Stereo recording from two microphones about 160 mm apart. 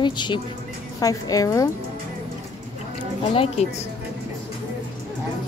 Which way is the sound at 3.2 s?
35° left (ahead or behind).